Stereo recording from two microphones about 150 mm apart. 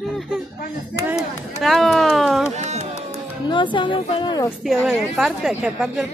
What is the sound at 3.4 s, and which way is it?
Speech, 35° left (ahead or behind).